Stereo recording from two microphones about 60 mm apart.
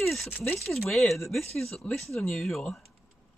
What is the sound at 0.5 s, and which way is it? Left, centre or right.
Speech, centre.